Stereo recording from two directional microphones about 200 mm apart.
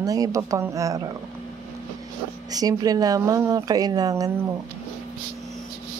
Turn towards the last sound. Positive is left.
turn(degrees=-20)  # may be behind; listen again after turning